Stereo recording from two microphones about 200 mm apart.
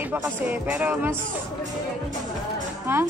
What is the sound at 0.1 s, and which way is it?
Speech, 10° right (ahead or behind).